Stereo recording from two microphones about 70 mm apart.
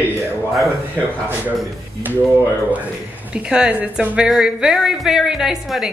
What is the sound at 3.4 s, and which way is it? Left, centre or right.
A woman's voice, centre.